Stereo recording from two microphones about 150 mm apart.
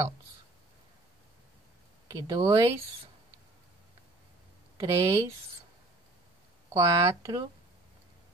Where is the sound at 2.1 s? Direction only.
30° right (ahead or behind).